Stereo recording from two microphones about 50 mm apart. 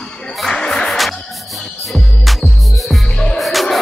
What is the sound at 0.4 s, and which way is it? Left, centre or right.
Music, centre.